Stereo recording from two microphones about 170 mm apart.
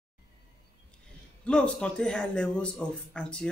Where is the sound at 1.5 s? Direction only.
5° left (ahead or behind).